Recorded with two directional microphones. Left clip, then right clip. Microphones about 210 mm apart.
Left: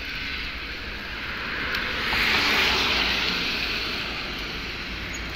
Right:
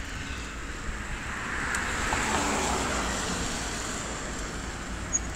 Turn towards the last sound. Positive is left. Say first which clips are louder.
# left 7 dB
turn(degrees=-30)  # may be behind; listen again after turning